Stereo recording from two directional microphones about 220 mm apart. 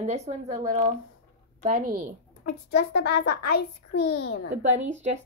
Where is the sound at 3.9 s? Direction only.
90° left.